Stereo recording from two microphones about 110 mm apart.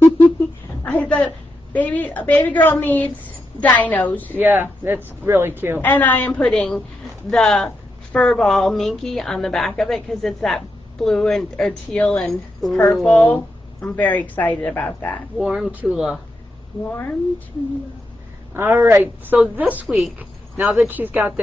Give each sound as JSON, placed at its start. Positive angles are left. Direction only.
{"t": 0.8, "sound": "a sound", "side_deg": 15}
{"t": 1.2, "sound": "a woman's voice", "side_deg": 15}
{"t": 4.4, "sound": "speech", "side_deg": -20}
{"t": 5.8, "sound": "a woman's voice", "side_deg": 15}
{"t": 13.0, "sound": "a woman's voice", "side_deg": 15}
{"t": 15.3, "sound": "a woman's voice", "side_deg": -5}
{"t": 18.5, "sound": "speech", "side_deg": -20}
{"t": 19.3, "sound": "a woman's voice", "side_deg": -10}